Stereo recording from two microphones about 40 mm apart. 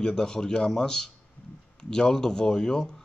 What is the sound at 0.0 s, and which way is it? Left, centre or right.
Speech, centre.